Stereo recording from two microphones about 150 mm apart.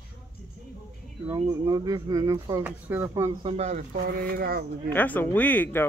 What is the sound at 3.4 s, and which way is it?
Speech, 40° right (ahead or behind).